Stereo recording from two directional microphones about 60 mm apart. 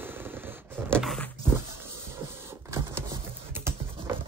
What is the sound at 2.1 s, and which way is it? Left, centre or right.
Printer, right.